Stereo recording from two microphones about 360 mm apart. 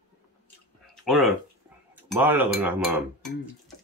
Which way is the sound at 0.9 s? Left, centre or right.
Centre.